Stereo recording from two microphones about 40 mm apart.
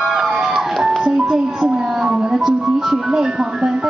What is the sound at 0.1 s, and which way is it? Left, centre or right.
Music, centre.